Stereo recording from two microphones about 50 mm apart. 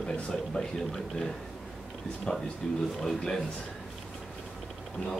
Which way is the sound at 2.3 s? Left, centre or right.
Centre.